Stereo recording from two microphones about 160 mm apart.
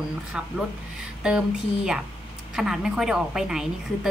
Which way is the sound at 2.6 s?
5° right (ahead or behind).